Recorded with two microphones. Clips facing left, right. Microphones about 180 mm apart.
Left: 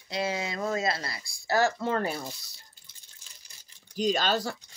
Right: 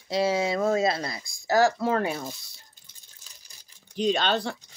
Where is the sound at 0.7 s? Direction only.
20° right (ahead or behind).